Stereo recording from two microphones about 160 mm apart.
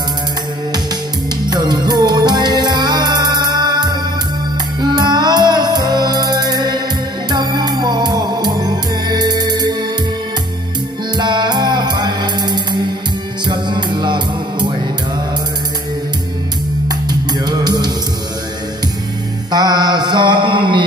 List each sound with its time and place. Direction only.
1.5 s music: 25° right (ahead or behind)
11.1 s music: 25° right (ahead or behind)
16.8 s music: 25° right (ahead or behind)
19.5 s mantra: 25° right (ahead or behind)